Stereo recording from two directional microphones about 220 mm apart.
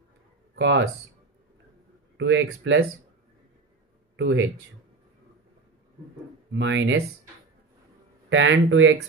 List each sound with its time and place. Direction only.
0.6 s speech: 55° right (ahead or behind)
2.1 s speech: 55° right (ahead or behind)
4.2 s speech: 55° right (ahead or behind)
6.5 s speech: 55° right (ahead or behind)
8.3 s speech: 60° right (ahead or behind)